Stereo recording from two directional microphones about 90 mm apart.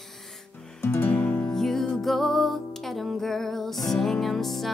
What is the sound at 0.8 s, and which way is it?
Music, 25° left (ahead or behind).